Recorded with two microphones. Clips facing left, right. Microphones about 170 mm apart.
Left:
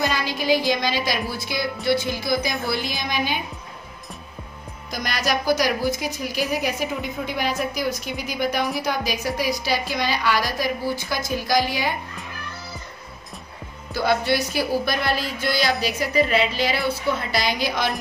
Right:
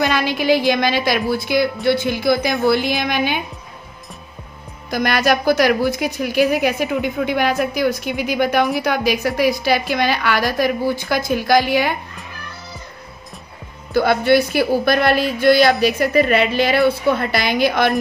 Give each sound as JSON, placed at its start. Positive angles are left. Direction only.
{"t": 0.0, "sound": "speech", "side_deg": -65}
{"t": 4.9, "sound": "speech", "side_deg": -60}
{"t": 13.9, "sound": "speech", "side_deg": -55}